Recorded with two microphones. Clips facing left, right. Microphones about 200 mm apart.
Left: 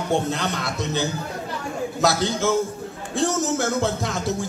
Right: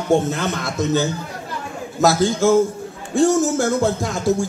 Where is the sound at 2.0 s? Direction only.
45° right (ahead or behind).